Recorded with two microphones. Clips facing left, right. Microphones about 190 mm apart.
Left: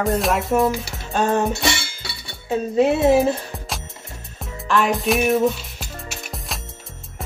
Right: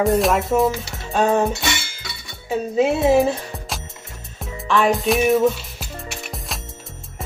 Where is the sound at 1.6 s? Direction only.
30° left (ahead or behind).